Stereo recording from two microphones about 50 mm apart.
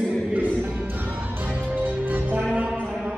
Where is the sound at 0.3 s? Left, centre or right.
Right.